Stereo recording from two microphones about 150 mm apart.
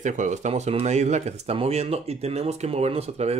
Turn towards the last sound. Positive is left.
turn(degrees=-45)  # may be behind; listen again after turning